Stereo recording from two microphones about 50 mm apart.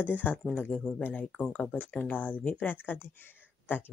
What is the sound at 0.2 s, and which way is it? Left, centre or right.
Speech, left.